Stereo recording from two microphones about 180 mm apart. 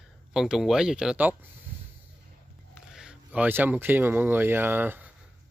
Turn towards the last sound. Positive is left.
turn(degrees=-10)  # may be behind; listen again after turning